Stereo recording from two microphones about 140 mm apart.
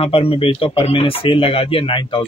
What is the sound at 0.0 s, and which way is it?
Speech, 40° left (ahead or behind).